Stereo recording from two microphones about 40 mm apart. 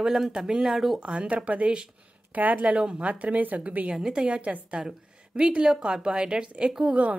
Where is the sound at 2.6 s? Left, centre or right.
Right.